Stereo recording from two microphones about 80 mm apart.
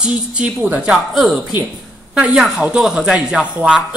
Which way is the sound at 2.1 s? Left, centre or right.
Centre.